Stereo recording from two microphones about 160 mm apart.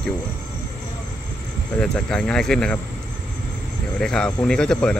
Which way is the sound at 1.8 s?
5° left (ahead or behind).